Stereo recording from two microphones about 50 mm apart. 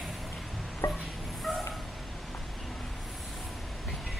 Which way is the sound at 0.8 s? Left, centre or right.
Left.